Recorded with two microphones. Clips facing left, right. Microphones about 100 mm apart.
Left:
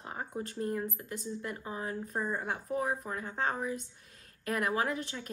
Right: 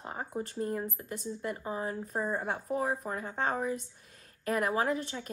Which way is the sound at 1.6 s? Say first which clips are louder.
Right 3 dB; 30° right (ahead or behind).